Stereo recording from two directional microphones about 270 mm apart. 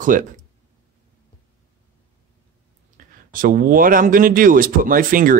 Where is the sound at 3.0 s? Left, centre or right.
Right.